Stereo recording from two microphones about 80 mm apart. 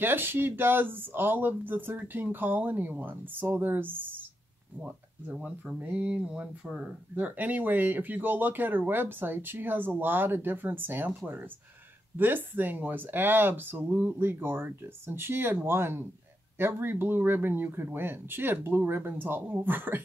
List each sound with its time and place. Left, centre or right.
0.0 s speech: right
12.2 s speech: right